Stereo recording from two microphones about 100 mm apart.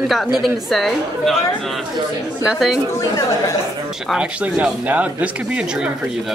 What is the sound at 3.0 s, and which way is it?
Speech, 35° left (ahead or behind).